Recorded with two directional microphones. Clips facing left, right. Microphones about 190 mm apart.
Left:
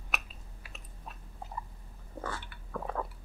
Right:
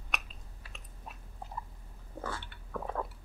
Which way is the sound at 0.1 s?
5° left (ahead or behind).